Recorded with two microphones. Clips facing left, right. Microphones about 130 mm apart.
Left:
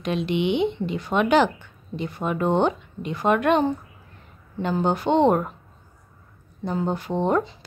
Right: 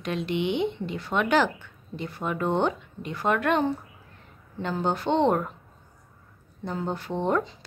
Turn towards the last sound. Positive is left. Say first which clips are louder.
# left 3 dB
turn(degrees=15)  # may be behind; listen again after turning